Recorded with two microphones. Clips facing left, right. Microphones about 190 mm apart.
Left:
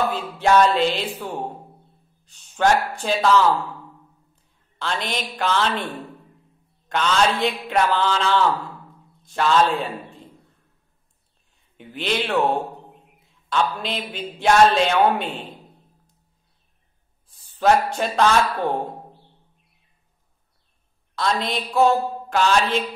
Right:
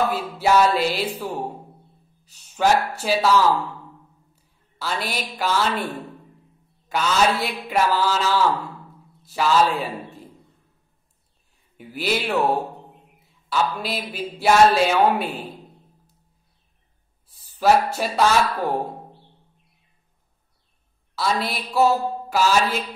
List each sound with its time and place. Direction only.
0.1 s music: 5° right (ahead or behind)
2.2 s speech: 5° right (ahead or behind)
4.7 s music: 5° right (ahead or behind)
6.9 s a woman's voice: 5° right (ahead or behind)
11.7 s a woman's voice: 5° right (ahead or behind)
14.1 s music: 5° right (ahead or behind)
17.3 s speech: 5° right (ahead or behind)
21.1 s a woman's voice: 5° right (ahead or behind)